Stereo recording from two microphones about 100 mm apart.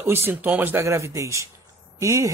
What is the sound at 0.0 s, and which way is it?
Speech, 20° right (ahead or behind).